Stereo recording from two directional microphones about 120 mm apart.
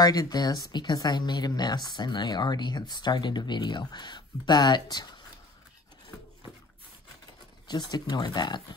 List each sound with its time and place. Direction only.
0.0 s speech: 30° left (ahead or behind)
7.6 s speech: 35° left (ahead or behind)